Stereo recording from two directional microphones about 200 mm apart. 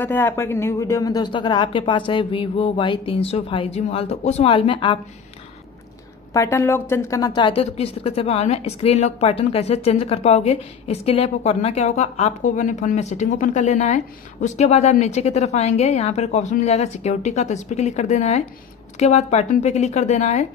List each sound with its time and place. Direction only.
0.0 s speech: 10° left (ahead or behind)
6.3 s a woman's voice: 15° left (ahead or behind); by 20.4 s 35° left (ahead or behind)